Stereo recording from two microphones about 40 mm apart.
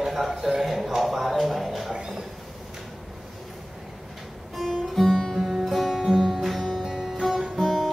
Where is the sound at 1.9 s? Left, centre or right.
Centre.